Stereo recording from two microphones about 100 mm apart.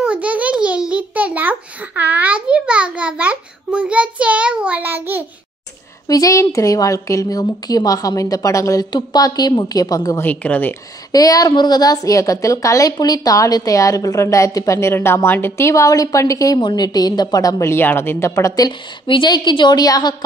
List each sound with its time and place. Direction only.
0.0 s a sound: 15° right (ahead or behind)
6.0 s a woman's voice: 35° left (ahead or behind)
10.2 s speech: 15° left (ahead or behind)
11.1 s a woman's voice: 40° left (ahead or behind)
16.5 s a woman's voice: 45° left (ahead or behind)
18.7 s a woman's voice: 55° left (ahead or behind)